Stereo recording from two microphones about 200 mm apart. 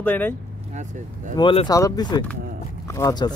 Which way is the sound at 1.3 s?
25° left (ahead or behind).